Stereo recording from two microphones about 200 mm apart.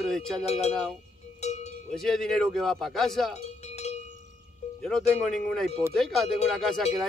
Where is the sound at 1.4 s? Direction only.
35° left (ahead or behind).